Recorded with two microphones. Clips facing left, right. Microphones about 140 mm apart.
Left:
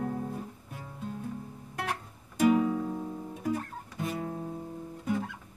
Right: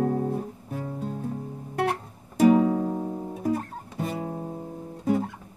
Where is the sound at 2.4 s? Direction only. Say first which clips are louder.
Right 6 dB; 35° right (ahead or behind).